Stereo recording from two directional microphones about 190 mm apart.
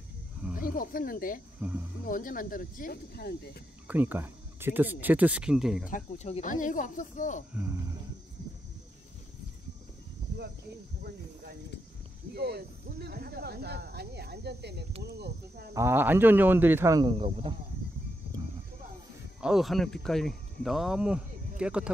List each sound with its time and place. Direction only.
0.6 s speech: 50° left (ahead or behind)
1.6 s speech: 10° right (ahead or behind)
2.0 s speech: 45° left (ahead or behind)
3.8 s speech: 10° right (ahead or behind)
5.9 s speech: 40° left (ahead or behind)
11.0 s speech: 55° right (ahead or behind)
15.7 s speech: 15° right (ahead or behind)
17.2 s speech: 30° right (ahead or behind)
19.4 s speech: centre (ahead or behind)